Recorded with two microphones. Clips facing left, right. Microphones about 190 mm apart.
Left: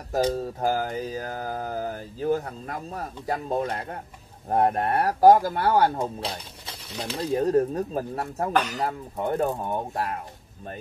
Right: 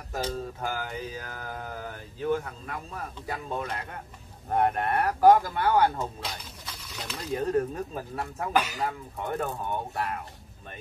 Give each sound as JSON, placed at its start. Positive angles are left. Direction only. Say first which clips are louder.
{"t": 0.1, "sound": "mantra", "louder": "left 8 dB", "side_deg": 35}